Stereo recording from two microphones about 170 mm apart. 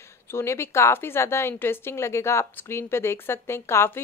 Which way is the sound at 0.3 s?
15° left (ahead or behind).